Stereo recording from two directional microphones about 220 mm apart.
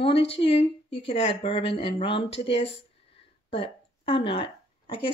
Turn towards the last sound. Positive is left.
turn(degrees=20)  # may be behind; listen again after turning